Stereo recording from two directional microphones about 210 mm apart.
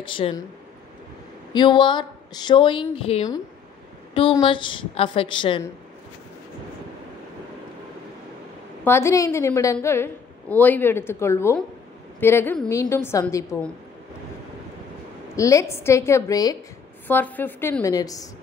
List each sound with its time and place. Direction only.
0.0 s a woman's voice: 25° left (ahead or behind)
1.5 s a woman's voice: 20° left (ahead or behind)
8.8 s a woman's voice: 10° left (ahead or behind)
15.3 s a woman's voice: 15° left (ahead or behind)